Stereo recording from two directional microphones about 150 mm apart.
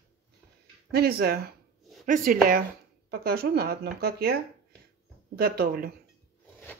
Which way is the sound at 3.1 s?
90° right.